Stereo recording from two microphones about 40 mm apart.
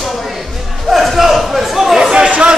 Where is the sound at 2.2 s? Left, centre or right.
Right.